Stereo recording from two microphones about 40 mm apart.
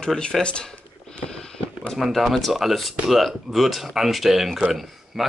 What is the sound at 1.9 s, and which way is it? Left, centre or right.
Speech, centre.